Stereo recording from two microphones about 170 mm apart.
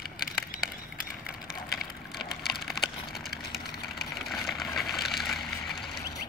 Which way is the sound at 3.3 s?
70° left (ahead or behind).